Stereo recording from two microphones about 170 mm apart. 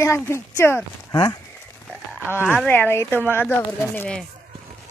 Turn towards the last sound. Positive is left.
turn(degrees=10)  # may be behind; listen again after turning